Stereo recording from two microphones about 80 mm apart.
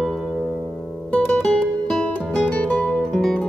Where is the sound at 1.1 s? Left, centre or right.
Centre.